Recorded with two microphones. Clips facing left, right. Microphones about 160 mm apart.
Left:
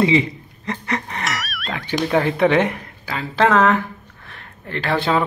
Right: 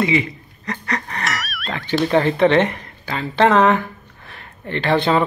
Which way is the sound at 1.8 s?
10° left (ahead or behind).